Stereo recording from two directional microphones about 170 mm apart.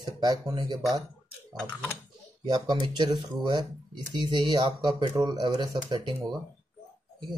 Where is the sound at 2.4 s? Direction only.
25° right (ahead or behind).